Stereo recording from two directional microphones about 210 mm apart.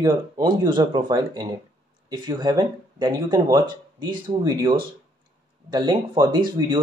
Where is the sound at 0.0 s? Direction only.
20° right (ahead or behind).